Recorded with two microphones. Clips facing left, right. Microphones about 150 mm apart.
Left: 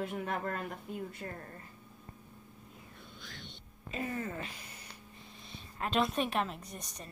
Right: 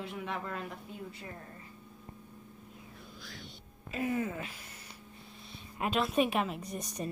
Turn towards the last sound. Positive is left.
turn(degrees=-5)  # may be behind; listen again after turning